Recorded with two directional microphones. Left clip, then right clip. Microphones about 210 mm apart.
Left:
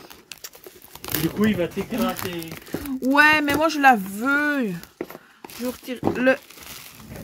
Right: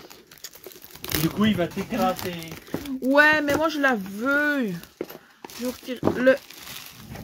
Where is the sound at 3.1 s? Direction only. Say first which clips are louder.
Left 1 dB; 15° left (ahead or behind).